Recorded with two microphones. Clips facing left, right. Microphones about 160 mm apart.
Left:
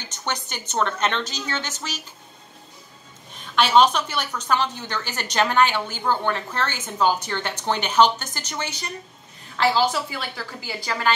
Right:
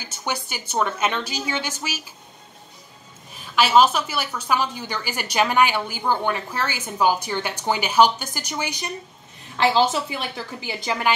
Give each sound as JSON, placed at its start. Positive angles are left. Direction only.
{"t": 0.0, "sound": "a woman's voice", "side_deg": -10}
{"t": 3.3, "sound": "a woman's voice", "side_deg": -5}